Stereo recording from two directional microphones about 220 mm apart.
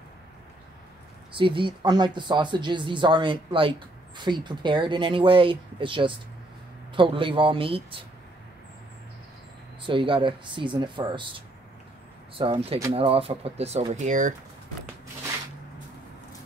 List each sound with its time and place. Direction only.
1.3 s speech: 25° right (ahead or behind)
9.8 s speech: 20° right (ahead or behind)